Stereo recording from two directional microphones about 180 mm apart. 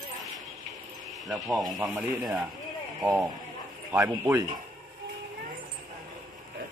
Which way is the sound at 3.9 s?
10° right (ahead or behind).